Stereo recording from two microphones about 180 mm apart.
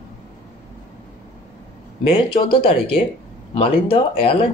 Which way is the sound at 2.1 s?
30° left (ahead or behind).